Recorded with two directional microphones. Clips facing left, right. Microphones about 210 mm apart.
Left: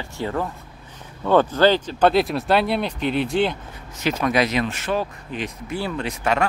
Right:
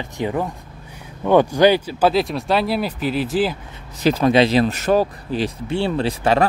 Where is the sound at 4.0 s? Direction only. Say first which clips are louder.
Right 6 dB; 35° right (ahead or behind).